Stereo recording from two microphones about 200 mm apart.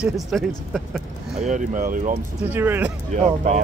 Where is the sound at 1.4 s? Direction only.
40° right (ahead or behind).